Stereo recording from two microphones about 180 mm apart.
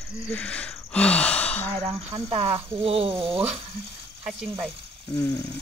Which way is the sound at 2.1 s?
15° right (ahead or behind).